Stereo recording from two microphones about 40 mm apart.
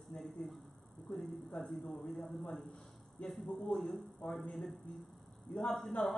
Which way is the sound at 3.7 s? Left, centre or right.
Left.